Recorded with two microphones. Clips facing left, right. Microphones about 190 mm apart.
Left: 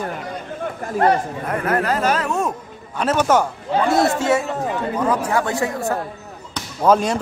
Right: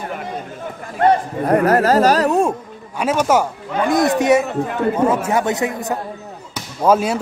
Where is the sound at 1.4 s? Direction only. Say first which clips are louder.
Right 8 dB; 40° right (ahead or behind).